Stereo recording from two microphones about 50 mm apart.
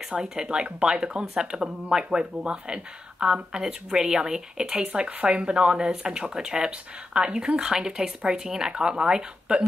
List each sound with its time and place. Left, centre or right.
0.1 s speech: centre